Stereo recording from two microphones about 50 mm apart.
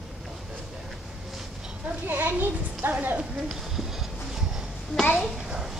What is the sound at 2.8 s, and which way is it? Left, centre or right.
Speech, right.